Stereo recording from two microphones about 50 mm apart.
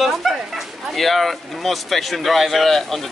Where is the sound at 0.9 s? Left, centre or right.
Centre.